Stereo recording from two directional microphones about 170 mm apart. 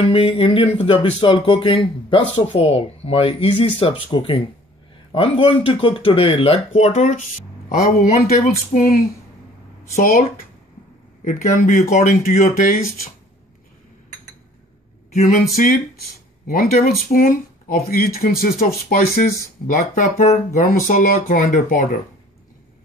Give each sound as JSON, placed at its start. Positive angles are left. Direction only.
{"t": 0.1, "sound": "speech", "side_deg": 35}
{"t": 11.2, "sound": "speech", "side_deg": 50}
{"t": 15.1, "sound": "speech", "side_deg": 50}